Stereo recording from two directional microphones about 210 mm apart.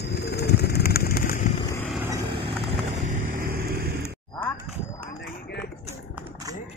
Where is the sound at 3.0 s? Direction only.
40° right (ahead or behind).